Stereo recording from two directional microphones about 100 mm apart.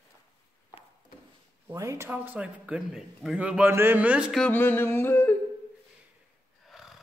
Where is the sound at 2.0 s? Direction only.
15° right (ahead or behind).